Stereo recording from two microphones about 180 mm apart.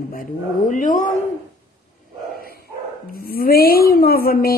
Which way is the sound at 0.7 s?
45° left (ahead or behind).